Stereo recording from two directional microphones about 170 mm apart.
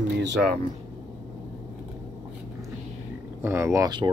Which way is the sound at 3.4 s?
15° right (ahead or behind).